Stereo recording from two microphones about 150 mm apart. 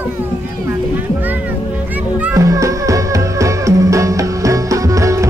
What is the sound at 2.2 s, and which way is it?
Music, 20° right (ahead or behind).